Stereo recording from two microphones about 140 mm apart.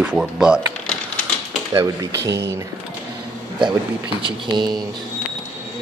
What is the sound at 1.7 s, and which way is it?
Speech, 25° right (ahead or behind).